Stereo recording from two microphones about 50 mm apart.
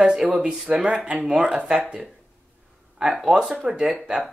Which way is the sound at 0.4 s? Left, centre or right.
Centre.